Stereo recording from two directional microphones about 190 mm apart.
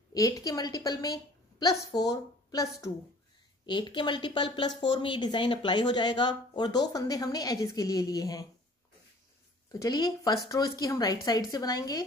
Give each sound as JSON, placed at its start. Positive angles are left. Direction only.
{"t": 0.1, "sound": "a woman's voice", "side_deg": 20}
{"t": 9.7, "sound": "speech", "side_deg": 20}